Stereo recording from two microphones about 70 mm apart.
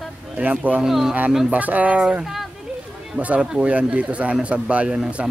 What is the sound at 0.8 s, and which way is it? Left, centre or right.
Speech, centre.